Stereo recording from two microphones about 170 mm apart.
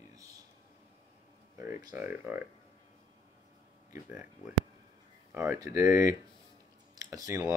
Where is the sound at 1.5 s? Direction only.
15° right (ahead or behind).